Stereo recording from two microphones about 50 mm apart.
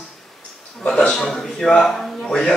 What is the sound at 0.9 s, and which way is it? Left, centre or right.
Speech, centre.